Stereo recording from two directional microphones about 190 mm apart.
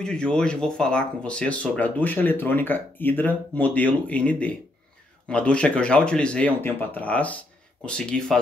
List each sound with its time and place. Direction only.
0.0 s speech: 5° left (ahead or behind)